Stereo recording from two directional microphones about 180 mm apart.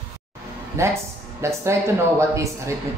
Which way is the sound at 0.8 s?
15° right (ahead or behind).